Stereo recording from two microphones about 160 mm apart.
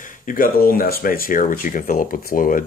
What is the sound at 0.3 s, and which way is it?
Speech, 60° left (ahead or behind).